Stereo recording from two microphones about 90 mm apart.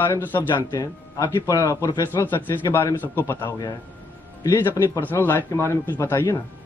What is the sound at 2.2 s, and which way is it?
Speech, 25° left (ahead or behind).